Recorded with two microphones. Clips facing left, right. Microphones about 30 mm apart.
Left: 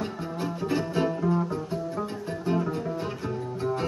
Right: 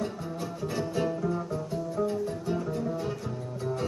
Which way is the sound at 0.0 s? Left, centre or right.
Left.